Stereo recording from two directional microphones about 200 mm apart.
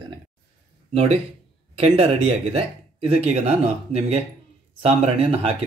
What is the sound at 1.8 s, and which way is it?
Speech, 30° right (ahead or behind).